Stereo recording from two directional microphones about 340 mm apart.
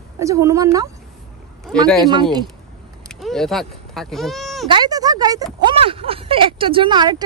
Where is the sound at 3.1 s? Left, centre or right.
Centre.